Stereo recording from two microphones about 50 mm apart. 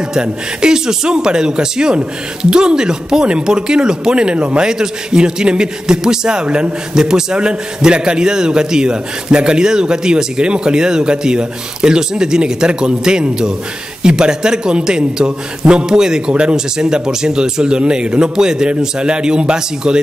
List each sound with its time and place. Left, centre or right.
0.1 s a man's voice: centre